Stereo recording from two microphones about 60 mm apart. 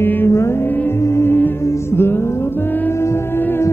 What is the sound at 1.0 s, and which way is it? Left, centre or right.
Music, left.